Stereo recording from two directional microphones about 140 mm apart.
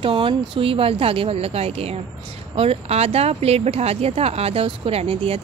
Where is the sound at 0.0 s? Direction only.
40° right (ahead or behind).